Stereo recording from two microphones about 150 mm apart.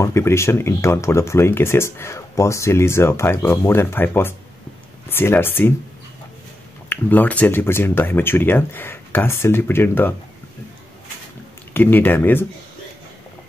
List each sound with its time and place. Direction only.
0.0 s speech: 20° left (ahead or behind)
6.9 s speech: 10° left (ahead or behind)
11.7 s speech: 15° left (ahead or behind)